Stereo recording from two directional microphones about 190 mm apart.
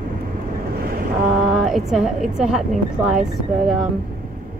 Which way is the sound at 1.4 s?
Centre (ahead or behind).